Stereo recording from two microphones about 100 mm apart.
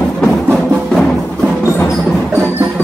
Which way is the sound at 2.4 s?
20° right (ahead or behind).